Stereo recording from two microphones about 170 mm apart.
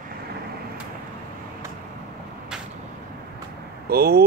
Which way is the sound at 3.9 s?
65° right (ahead or behind).